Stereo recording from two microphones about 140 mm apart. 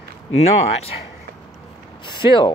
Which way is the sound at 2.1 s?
35° left (ahead or behind).